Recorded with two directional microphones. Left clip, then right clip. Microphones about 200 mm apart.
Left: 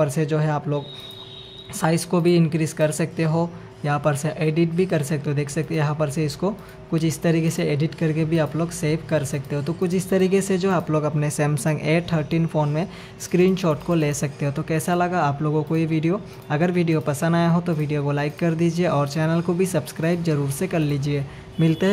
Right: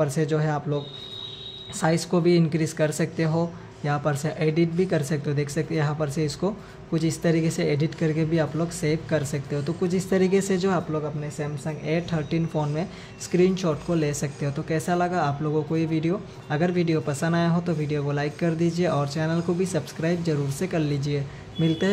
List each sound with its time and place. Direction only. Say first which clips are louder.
0.0 s speech: left 2 dB; 10° left (ahead or behind)
10.9 s speech: left 6 dB; 25° left (ahead or behind)